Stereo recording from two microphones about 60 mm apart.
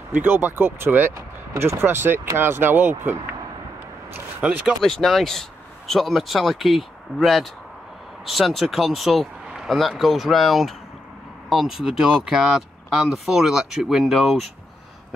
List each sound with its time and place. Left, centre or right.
0.1 s speech: right
4.4 s speech: right
4.8 s speech: centre